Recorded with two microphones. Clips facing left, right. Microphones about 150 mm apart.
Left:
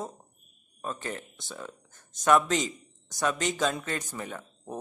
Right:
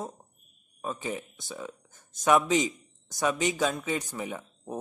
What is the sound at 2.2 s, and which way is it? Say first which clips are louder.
A man's voice: even; 15° right (ahead or behind).